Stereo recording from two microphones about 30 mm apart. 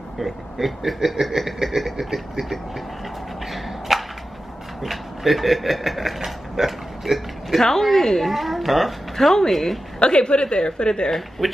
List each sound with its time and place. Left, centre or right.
0.2 s speech: centre
3.5 s whip: centre
4.8 s speech: centre
7.8 s a woman's voice: centre
8.3 s speech: centre
9.1 s a woman's voice: centre
9.9 s a woman's voice: left
11.1 s speech: centre